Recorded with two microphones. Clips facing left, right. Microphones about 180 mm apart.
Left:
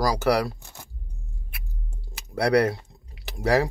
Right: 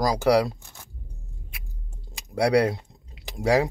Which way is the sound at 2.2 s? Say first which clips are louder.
Even; 15° right (ahead or behind).